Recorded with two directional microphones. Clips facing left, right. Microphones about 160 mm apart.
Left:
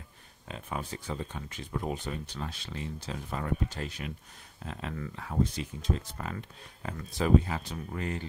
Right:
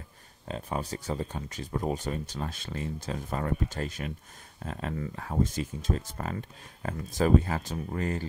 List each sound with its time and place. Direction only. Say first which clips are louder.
0.5 s speech: right 4 dB; 35° right (ahead or behind)